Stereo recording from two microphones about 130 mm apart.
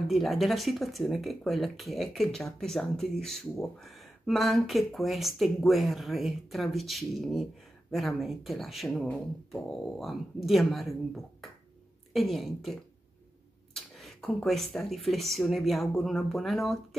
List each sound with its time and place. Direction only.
0.1 s speech: centre (ahead or behind)
13.7 s speech: centre (ahead or behind)